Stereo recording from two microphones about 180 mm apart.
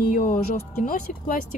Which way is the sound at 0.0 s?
50° left (ahead or behind).